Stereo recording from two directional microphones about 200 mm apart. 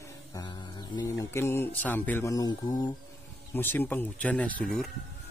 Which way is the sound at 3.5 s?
10° left (ahead or behind).